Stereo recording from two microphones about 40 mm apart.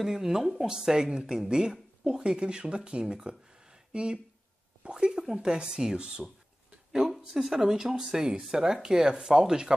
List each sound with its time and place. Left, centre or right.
0.0 s speech: centre
7.4 s speech: centre